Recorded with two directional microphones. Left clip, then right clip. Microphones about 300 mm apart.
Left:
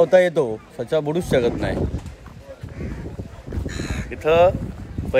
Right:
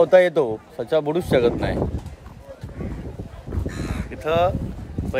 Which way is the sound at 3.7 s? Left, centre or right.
Centre.